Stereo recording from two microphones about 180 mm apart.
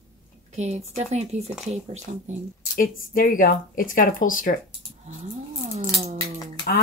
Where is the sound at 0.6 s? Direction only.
35° right (ahead or behind).